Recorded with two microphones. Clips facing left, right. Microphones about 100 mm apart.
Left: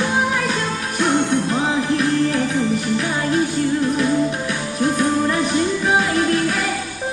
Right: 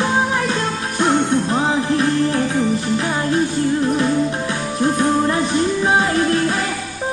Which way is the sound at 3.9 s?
30° right (ahead or behind).